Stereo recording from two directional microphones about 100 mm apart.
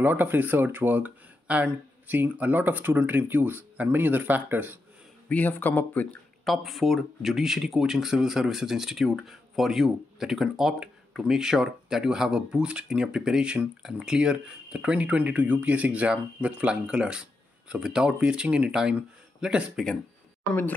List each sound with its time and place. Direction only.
0.0 s speech: 20° right (ahead or behind)
5.3 s a man's voice: 15° left (ahead or behind)
6.4 s speech: centre (ahead or behind)